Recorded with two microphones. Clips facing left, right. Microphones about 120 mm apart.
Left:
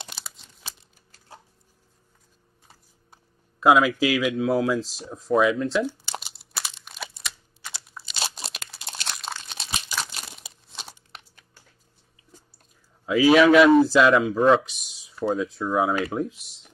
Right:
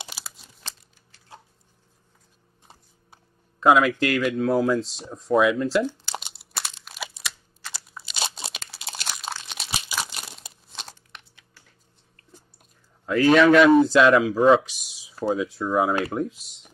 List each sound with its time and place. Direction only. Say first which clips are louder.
0.0 s crumpling: right 1 dB; 5° right (ahead or behind)
3.1 s a sound: right 1 dB; centre (ahead or behind)
4.0 s speech: even; 5° left (ahead or behind)
5.9 s crumpling: right 1 dB; centre (ahead or behind)
11.1 s a sound: left 1 dB; 35° left (ahead or behind)
13.0 s speech: even; 5° left (ahead or behind)